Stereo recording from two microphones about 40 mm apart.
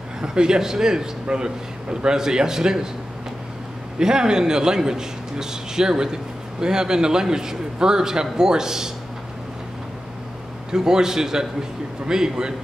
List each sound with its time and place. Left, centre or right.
0.2 s a man's voice: centre
4.0 s a man's voice: centre
10.7 s a man's voice: centre